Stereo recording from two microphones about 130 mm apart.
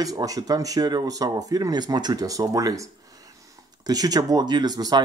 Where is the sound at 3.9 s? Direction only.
30° right (ahead or behind).